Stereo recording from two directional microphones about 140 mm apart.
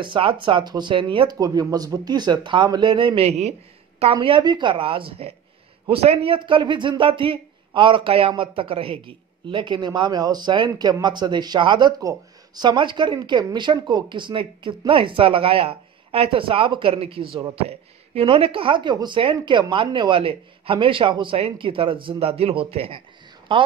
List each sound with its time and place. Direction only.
0.0 s speech: 35° right (ahead or behind)
4.0 s speech: 40° right (ahead or behind)